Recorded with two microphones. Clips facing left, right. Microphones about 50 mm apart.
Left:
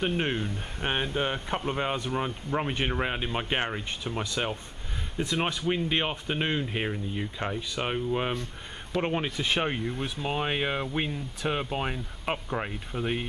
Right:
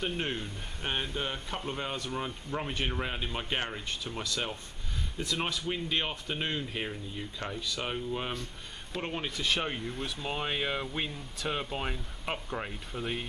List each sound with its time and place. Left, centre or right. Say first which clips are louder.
0.0 s speech: left 5 dB; left